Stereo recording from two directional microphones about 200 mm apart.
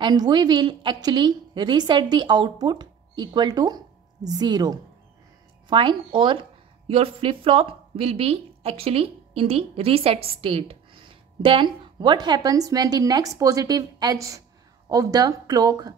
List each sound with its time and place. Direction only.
0.0 s a woman's voice: 20° right (ahead or behind)